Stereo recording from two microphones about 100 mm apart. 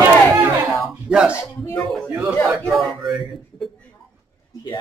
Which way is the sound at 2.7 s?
Centre (ahead or behind).